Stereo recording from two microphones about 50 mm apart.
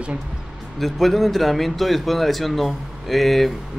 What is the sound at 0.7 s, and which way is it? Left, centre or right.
Speech, centre.